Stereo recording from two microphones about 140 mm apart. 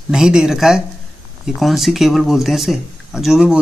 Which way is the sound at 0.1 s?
5° right (ahead or behind).